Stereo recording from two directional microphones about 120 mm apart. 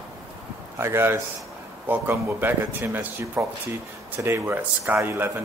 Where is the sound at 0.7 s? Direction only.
20° right (ahead or behind).